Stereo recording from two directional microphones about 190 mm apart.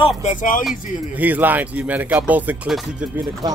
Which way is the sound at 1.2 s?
10° right (ahead or behind).